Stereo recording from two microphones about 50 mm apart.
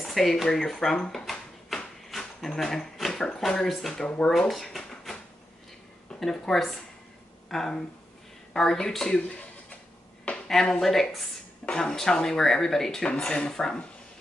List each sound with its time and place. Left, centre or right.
0.0 s speech: centre
1.1 s drawer open or close: centre
2.0 s speech: centre
4.0 s speech: left
4.5 s a sound: centre
6.1 s speech: centre